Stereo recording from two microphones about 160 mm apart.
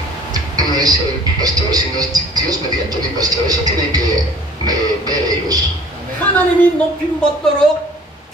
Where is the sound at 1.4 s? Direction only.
25° right (ahead or behind).